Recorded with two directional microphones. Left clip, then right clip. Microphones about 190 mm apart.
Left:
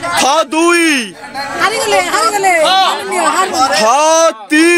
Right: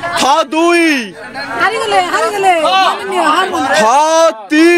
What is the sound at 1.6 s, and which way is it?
Speech, 30° right (ahead or behind).